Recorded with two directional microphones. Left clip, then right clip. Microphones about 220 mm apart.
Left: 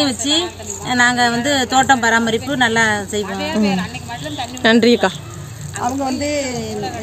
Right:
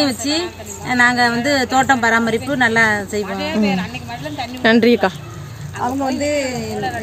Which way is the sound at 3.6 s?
45° right (ahead or behind).